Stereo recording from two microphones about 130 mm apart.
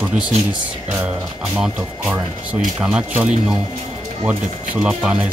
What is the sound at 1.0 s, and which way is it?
Speech, 5° right (ahead or behind).